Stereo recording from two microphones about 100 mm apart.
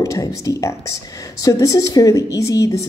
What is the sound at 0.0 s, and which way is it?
Speech, 35° left (ahead or behind).